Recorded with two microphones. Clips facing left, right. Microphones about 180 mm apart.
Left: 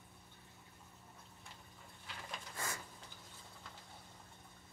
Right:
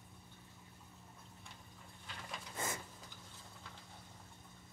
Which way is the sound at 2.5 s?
20° right (ahead or behind).